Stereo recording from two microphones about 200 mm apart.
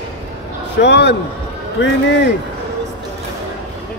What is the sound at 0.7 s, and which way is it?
A man's voice, 60° left (ahead or behind).